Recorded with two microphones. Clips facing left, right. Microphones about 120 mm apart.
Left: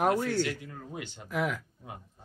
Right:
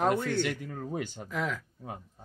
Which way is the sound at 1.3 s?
10° left (ahead or behind).